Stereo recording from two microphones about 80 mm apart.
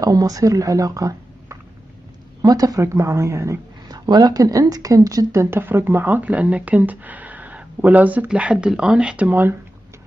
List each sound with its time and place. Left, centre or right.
0.0 s speech: right
2.8 s speech: right
3.9 s speech: right